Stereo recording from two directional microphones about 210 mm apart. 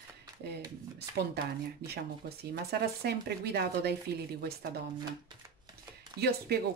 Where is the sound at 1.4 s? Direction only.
50° right (ahead or behind).